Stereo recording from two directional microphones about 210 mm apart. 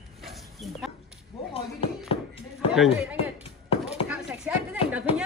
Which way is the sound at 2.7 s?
Centre (ahead or behind).